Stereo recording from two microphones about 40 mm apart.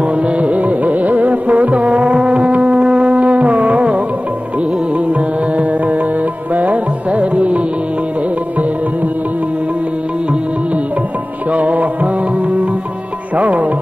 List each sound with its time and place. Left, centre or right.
0.0 s music: right
11.5 s music: right